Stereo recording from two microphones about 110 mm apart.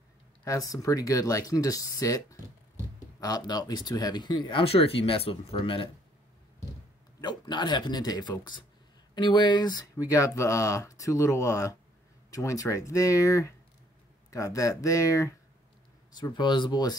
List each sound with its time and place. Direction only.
0.5 s speech: 30° left (ahead or behind); by 5.9 s 55° left (ahead or behind)
7.2 s speech: 40° left (ahead or behind)
16.2 s speech: 40° left (ahead or behind)